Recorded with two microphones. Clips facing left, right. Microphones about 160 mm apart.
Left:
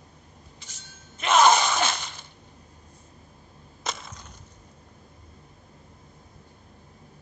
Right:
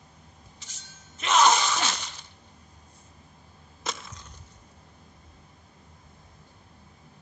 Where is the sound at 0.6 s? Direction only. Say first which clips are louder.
Left 2 dB; 55° left (ahead or behind).